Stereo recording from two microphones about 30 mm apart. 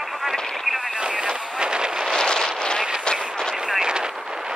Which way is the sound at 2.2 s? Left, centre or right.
Left.